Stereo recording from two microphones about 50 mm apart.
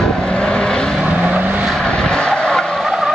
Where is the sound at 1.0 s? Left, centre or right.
Right.